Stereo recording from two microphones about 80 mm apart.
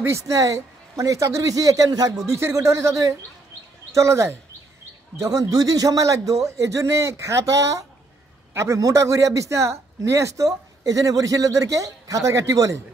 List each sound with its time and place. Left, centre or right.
0.0 s a man's voice: right